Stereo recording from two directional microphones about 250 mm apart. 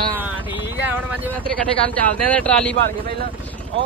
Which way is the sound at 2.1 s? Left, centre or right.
Centre.